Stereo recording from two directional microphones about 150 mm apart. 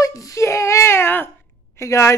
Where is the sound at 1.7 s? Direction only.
20° left (ahead or behind).